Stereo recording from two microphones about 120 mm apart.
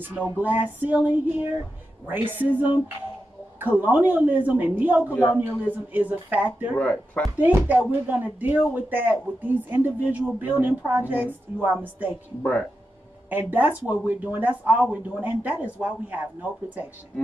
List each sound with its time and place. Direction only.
0.0 s speech: 15° right (ahead or behind)
6.7 s speech: 10° left (ahead or behind)
7.3 s speech: 15° right (ahead or behind)
13.3 s speech: 15° right (ahead or behind)